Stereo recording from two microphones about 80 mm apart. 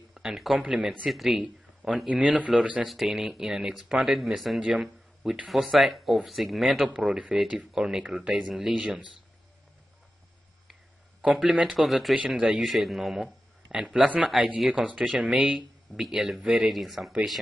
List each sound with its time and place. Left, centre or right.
0.1 s speech: centre
1.4 s a sound: centre
2.0 s speech: centre
2.9 s speech: centre
10.7 s a sound: centre
11.9 s speech: centre